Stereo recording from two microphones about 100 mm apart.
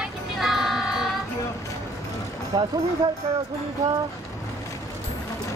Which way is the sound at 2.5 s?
45° right (ahead or behind).